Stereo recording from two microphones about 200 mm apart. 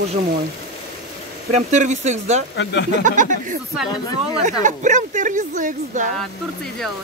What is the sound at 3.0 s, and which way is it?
Speech, 40° right (ahead or behind).